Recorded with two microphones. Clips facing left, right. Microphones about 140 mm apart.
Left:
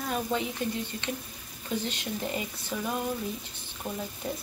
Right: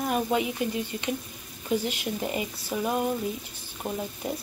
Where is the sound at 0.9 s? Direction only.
10° right (ahead or behind).